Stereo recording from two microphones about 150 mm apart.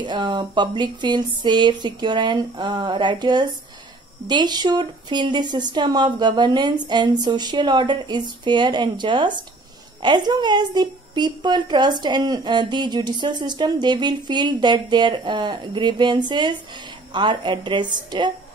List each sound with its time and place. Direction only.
0.0 s a woman's voice: 30° right (ahead or behind)